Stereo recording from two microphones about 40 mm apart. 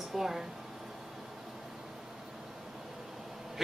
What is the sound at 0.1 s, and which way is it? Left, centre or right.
Speech, centre.